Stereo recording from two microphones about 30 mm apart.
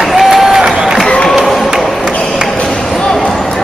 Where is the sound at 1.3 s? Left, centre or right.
Centre.